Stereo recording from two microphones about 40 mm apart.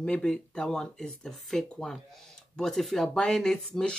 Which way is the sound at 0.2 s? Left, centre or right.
Centre.